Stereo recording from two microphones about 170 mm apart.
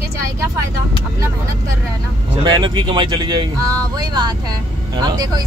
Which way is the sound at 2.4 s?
25° right (ahead or behind).